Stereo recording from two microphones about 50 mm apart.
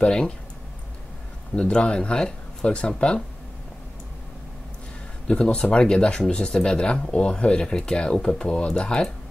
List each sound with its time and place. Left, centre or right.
0.0 s speech: centre
1.5 s speech: left
5.3 s speech: centre